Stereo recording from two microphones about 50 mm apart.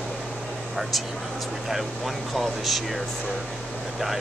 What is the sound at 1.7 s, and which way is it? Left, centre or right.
Speech, centre.